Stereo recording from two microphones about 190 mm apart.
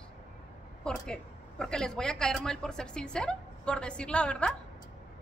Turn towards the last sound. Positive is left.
turn(degrees=5)  # may be behind; listen again after turning